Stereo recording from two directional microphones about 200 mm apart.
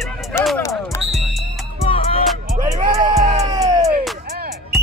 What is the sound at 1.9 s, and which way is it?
Music, 30° left (ahead or behind).